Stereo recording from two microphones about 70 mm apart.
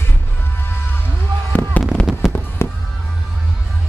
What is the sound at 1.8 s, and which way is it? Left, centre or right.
Fireworks, left.